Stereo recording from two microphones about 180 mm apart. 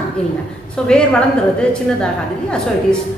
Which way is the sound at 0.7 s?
5° left (ahead or behind).